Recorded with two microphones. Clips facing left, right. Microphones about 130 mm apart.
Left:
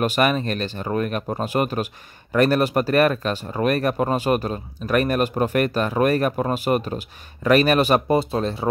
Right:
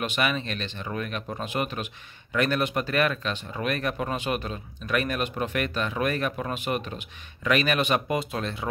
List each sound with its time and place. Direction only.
0.0 s speech: 40° left (ahead or behind)